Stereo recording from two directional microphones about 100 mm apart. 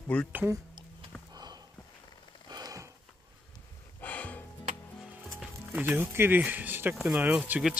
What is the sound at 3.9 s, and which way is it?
Music, 15° left (ahead or behind).